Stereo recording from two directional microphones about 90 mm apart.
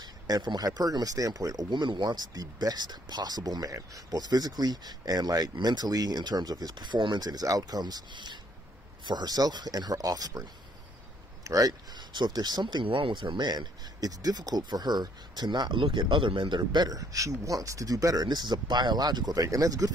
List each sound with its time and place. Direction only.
0.0 s speech: 50° right (ahead or behind)
11.4 s speech: 40° right (ahead or behind)
12.8 s speech: 70° right (ahead or behind); by 19.9 s 40° right (ahead or behind)